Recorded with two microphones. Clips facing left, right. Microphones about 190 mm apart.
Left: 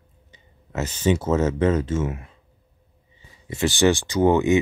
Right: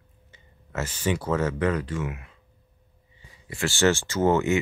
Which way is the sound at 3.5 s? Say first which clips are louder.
Left 3 dB; 20° left (ahead or behind).